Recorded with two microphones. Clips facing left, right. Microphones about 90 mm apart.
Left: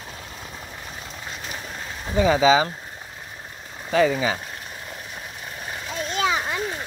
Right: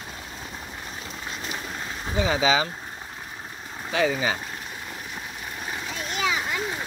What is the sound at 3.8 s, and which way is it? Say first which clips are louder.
Speech: left 4 dB; 45° left (ahead or behind).